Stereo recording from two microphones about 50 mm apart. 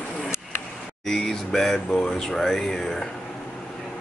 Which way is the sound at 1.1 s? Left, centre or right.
Centre.